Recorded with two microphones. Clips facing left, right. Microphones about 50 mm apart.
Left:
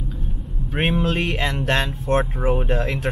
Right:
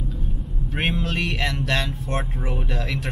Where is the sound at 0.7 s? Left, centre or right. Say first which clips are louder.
Left 4 dB; left.